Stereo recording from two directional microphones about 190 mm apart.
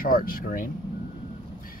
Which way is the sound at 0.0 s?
50° left (ahead or behind).